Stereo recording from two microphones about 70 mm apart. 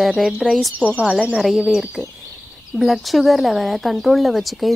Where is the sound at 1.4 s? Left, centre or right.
Centre.